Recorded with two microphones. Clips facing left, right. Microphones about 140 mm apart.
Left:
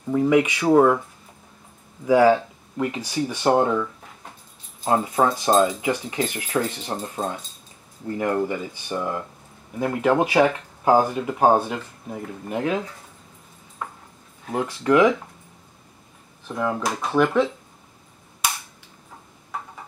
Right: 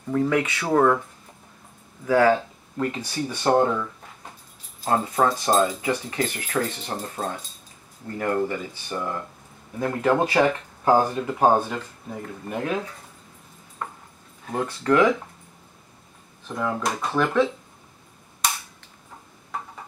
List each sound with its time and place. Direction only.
0.1 s speech: 15° left (ahead or behind)
2.0 s speech: 15° left (ahead or behind)
13.8 s dog: 5° left (ahead or behind)
14.4 s speech: 10° left (ahead or behind)
16.5 s speech: 5° left (ahead or behind)